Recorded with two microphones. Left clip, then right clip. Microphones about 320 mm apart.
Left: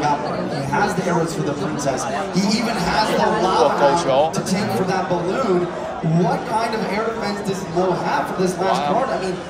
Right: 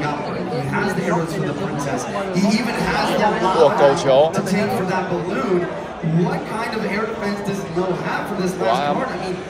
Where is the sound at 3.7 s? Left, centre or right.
Right.